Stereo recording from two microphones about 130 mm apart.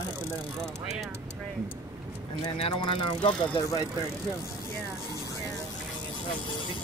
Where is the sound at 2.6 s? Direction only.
40° left (ahead or behind).